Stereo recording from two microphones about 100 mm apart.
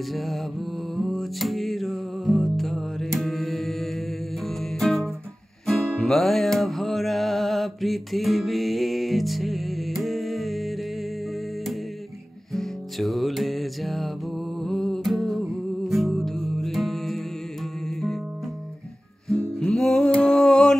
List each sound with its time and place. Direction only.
0.1 s music: centre (ahead or behind)
12.5 s music: centre (ahead or behind)
19.2 s music: 5° left (ahead or behind)